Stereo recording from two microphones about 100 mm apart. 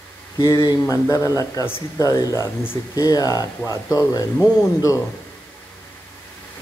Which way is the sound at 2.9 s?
35° left (ahead or behind).